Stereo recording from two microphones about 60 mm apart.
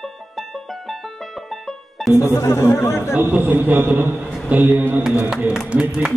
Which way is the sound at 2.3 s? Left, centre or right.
Left.